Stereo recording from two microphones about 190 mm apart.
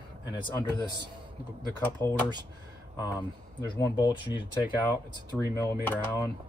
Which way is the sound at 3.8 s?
20° left (ahead or behind).